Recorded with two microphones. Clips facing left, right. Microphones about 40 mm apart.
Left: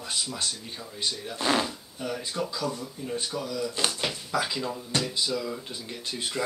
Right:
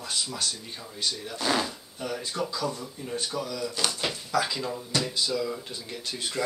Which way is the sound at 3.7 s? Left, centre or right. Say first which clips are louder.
Left 1 dB; left.